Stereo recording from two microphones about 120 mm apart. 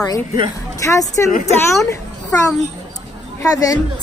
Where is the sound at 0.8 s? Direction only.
25° left (ahead or behind).